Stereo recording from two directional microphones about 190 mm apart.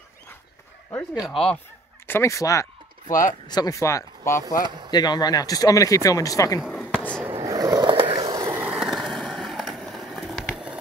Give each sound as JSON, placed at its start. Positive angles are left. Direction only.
{"t": 1.3, "sound": "speech", "side_deg": 5}
{"t": 3.1, "sound": "speech", "side_deg": 45}
{"t": 3.4, "sound": "speech", "side_deg": 20}
{"t": 6.6, "sound": "a sound", "side_deg": 0}
{"t": 7.4, "sound": "skateboard", "side_deg": -20}